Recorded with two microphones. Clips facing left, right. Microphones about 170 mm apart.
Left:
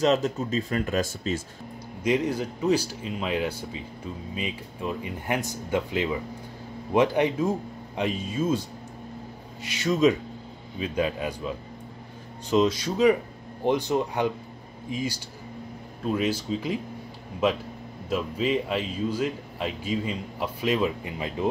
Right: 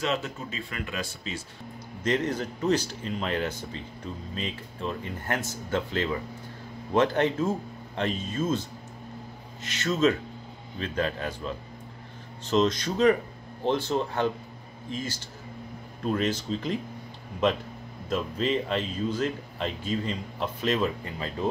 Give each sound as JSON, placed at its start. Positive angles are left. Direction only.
{"t": 0.0, "sound": "speech", "side_deg": 35}
{"t": 2.0, "sound": "speech", "side_deg": 10}